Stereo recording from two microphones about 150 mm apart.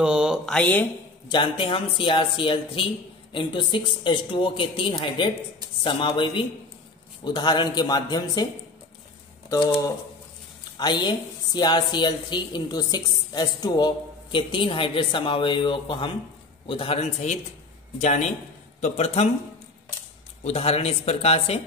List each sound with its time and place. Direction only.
0.0 s speech: 5° right (ahead or behind)
1.3 s a man's voice: 35° left (ahead or behind)
9.5 s a man's voice: 30° left (ahead or behind); by 19.2 s 45° left (ahead or behind)
20.4 s speech: 45° left (ahead or behind)